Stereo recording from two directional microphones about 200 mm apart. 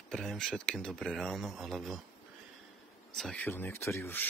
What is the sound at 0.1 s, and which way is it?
Speech, centre (ahead or behind).